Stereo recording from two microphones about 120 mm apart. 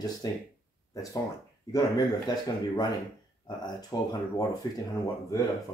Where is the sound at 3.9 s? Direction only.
25° left (ahead or behind).